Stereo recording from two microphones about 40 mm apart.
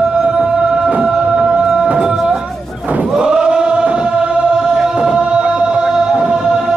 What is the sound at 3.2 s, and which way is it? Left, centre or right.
Chant, right.